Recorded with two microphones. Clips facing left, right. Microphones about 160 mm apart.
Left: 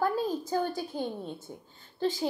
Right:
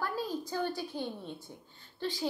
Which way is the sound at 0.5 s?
45° left (ahead or behind).